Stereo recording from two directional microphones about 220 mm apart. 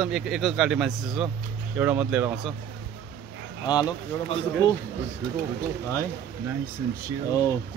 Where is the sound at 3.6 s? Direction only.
20° left (ahead or behind).